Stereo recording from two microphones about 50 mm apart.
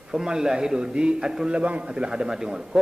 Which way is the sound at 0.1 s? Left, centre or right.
Centre.